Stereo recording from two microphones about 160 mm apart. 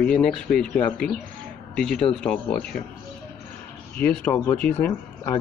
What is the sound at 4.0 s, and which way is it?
Speech, 10° left (ahead or behind).